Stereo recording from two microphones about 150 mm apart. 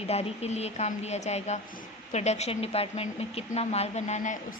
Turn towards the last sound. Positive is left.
turn(degrees=55)  # may be behind; listen again after turning